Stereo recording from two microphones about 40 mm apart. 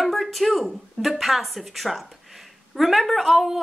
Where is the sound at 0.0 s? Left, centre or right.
Centre.